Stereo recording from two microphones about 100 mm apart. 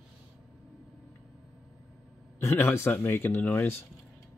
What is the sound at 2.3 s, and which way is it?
Speech, 20° left (ahead or behind).